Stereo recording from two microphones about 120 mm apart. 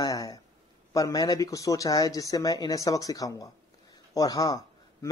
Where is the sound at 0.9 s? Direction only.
30° left (ahead or behind).